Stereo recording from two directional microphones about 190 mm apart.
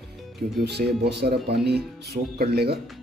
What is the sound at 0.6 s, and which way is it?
Speech, 60° right (ahead or behind).